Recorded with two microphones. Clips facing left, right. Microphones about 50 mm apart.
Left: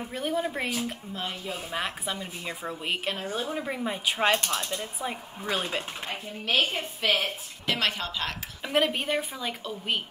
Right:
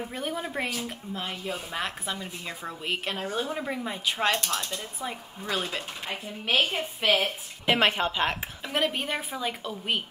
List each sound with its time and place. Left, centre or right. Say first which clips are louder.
0.1 s a woman's voice: left 3 dB; centre
6.0 s speech: right 1 dB; centre
7.2 s speech: right 2 dB; right
8.6 s a woman's voice: left 2 dB; centre